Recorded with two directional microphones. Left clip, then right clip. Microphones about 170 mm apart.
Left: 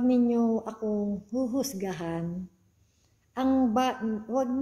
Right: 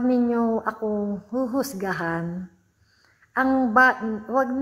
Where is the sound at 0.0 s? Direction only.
40° right (ahead or behind).